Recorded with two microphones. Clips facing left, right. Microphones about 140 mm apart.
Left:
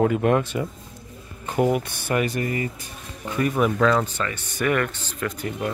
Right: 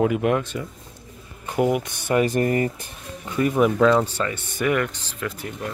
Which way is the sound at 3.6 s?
15° right (ahead or behind).